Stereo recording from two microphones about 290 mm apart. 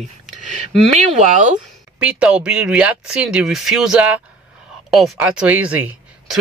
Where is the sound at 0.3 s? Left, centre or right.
Right.